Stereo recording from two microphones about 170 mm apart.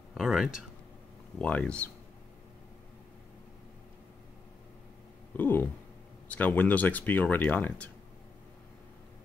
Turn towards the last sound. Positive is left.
turn(degrees=10)  # may be behind; listen again after turning